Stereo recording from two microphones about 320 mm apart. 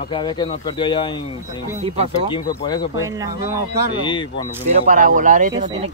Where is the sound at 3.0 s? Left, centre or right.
Centre.